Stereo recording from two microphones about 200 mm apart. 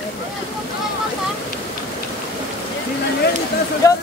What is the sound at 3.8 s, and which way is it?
Speech, 15° left (ahead or behind).